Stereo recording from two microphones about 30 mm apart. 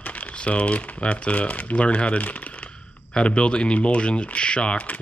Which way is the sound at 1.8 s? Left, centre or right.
Left.